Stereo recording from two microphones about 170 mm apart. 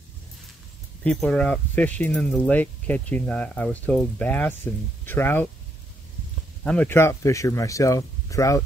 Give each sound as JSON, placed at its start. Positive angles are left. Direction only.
{"t": 1.0, "sound": "speech", "side_deg": 5}
{"t": 6.6, "sound": "speech", "side_deg": 5}